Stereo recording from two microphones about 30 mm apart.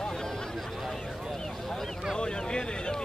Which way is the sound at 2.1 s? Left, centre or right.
Left.